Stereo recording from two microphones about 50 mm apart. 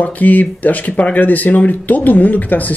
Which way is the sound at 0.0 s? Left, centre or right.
Left.